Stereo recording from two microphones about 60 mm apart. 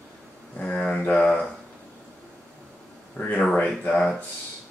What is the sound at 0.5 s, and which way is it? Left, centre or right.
Speech, centre.